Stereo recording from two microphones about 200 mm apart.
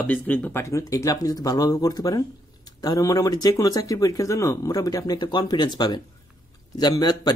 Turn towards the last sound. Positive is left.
turn(degrees=20)  # may be behind; listen again after turning